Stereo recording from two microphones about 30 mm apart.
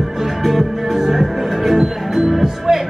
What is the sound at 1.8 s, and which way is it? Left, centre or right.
Music, centre.